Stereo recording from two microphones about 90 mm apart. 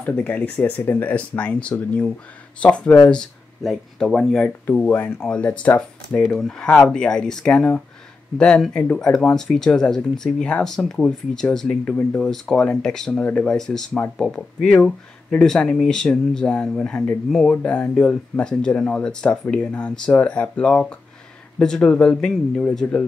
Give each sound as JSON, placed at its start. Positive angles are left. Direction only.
{"t": 0.1, "sound": "speech", "side_deg": 20}
{"t": 4.6, "sound": "speech", "side_deg": 20}